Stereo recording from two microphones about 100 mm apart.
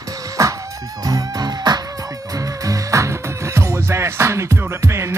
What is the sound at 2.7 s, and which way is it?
Music, 30° right (ahead or behind).